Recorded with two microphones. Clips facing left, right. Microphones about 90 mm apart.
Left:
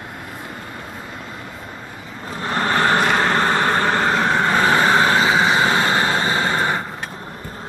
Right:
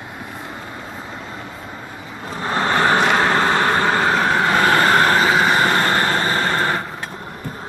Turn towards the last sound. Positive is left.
turn(degrees=10)  # may be behind; listen again after turning